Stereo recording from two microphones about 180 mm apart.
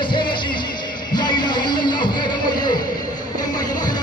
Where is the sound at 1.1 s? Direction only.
25° left (ahead or behind).